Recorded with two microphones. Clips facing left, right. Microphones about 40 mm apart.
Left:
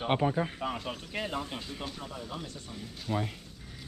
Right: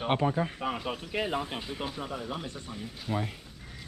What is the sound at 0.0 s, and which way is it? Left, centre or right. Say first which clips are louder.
Speech: right 1 dB; centre.